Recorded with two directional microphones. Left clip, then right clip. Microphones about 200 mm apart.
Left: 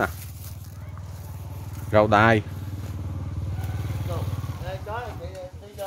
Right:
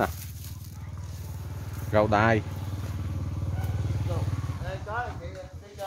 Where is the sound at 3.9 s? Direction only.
35° left (ahead or behind).